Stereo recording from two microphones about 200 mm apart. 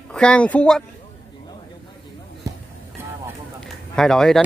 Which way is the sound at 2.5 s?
20° right (ahead or behind).